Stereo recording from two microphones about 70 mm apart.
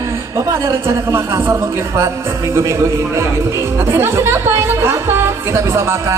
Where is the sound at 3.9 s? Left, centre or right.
Right.